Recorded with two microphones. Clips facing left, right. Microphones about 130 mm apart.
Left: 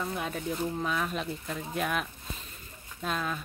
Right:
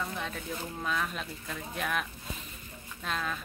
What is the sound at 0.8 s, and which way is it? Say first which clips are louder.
Speech: left 3 dB; 5° left (ahead or behind).